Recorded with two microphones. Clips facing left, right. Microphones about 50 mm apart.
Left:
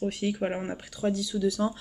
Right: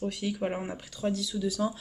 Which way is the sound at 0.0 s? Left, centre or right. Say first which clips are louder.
Left 3 dB; left.